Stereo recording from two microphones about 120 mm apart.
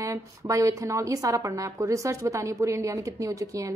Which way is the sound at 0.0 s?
25° right (ahead or behind).